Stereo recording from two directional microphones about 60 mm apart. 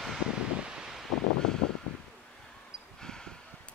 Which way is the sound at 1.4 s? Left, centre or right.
Centre.